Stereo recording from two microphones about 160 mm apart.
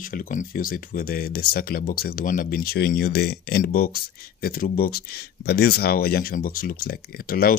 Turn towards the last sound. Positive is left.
turn(degrees=65)  # may be behind; listen again after turning